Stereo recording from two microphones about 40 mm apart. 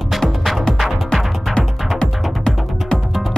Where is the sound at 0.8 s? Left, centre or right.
Centre.